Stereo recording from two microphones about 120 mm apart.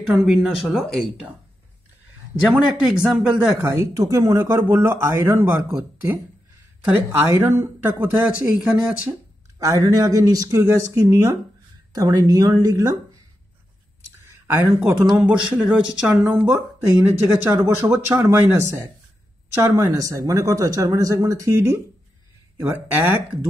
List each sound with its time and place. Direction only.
0.1 s speech: 5° right (ahead or behind)
2.5 s speech: 5° right (ahead or behind)
3.6 s speech: 25° right (ahead or behind)
7.1 s speech: 20° right (ahead or behind)
9.6 s speech: 30° right (ahead or behind)
14.2 s a sound: 20° right (ahead or behind)
14.9 s speech: 10° right (ahead or behind)